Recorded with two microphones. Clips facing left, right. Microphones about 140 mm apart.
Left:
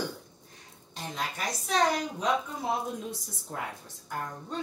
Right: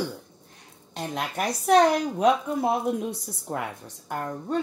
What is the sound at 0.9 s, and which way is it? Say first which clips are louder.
A woman's voice: right 5 dB; 65° right (ahead or behind).